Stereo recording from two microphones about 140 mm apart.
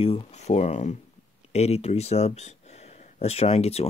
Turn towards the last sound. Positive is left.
turn(degrees=45)  # may be behind; listen again after turning